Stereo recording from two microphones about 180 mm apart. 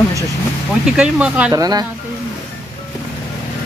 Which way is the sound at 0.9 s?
5° right (ahead or behind).